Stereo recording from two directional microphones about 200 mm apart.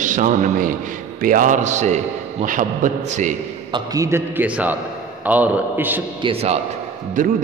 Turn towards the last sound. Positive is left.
turn(degrees=-45)  # may be behind; listen again after turning